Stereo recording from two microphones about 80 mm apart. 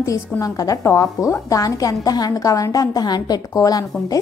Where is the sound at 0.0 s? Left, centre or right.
Left.